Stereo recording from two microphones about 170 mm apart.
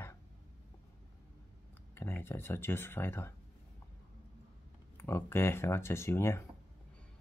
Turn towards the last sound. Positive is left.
turn(degrees=15)  # may be behind; listen again after turning